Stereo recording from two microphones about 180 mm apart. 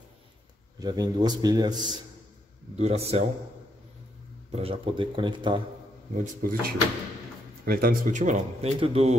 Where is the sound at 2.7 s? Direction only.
35° right (ahead or behind).